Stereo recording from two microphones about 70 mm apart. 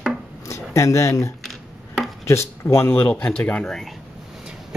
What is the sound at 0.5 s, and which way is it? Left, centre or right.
Speech, left.